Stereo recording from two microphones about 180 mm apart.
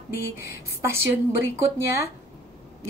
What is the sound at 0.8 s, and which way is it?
Speech, 15° right (ahead or behind).